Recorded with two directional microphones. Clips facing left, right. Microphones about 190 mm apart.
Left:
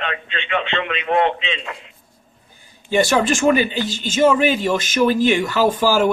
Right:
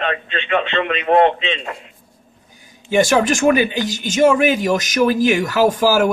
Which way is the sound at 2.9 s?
15° right (ahead or behind).